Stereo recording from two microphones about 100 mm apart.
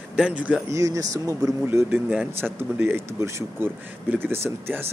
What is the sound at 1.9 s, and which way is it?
Speech, 10° right (ahead or behind).